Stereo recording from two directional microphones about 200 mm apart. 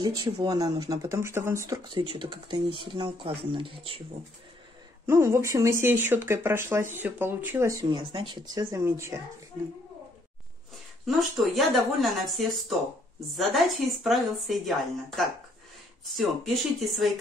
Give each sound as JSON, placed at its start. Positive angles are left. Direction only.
{"t": 0.0, "sound": "speech", "side_deg": -20}
{"t": 5.0, "sound": "speech", "side_deg": -15}
{"t": 11.1, "sound": "speech", "side_deg": 0}
{"t": 16.1, "sound": "speech", "side_deg": 0}